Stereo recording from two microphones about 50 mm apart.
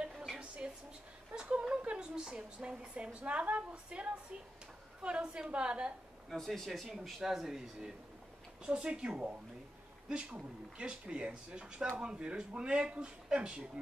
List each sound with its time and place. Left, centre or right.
0.6 s a sound: centre
1.9 s a woman's voice: centre
6.3 s a woman's voice: centre